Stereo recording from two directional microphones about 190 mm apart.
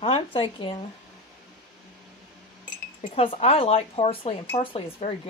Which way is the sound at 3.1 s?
30° left (ahead or behind).